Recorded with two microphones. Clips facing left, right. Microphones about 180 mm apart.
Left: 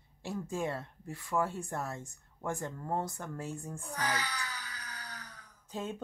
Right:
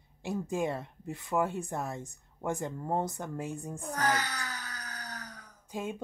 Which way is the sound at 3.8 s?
45° right (ahead or behind).